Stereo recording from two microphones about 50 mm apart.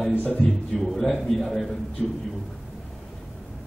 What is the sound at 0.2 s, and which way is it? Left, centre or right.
Speech, left.